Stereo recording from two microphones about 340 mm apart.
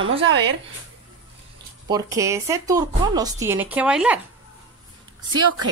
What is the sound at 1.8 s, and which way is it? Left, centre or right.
A woman's voice, centre.